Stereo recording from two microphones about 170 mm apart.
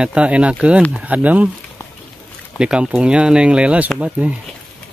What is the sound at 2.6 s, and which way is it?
Speech, 5° right (ahead or behind).